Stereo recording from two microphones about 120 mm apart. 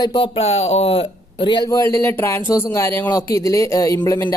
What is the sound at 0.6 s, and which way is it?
Speech, 55° left (ahead or behind).